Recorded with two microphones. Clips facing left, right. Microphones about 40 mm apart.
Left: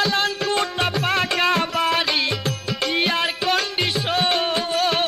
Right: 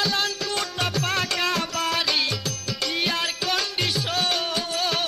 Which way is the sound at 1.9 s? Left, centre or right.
Centre.